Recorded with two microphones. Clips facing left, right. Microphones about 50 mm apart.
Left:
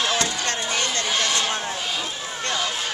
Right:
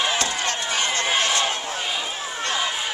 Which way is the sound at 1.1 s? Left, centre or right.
Centre.